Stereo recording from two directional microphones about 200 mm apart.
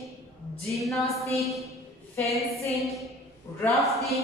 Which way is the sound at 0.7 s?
Centre (ahead or behind).